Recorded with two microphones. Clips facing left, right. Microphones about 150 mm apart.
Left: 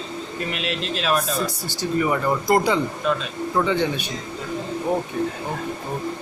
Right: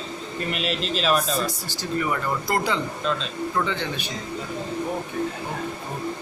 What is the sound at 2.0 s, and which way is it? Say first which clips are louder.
Speech: left 7 dB; 15° left (ahead or behind).